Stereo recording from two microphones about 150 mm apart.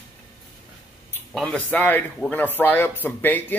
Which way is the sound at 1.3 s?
5° left (ahead or behind).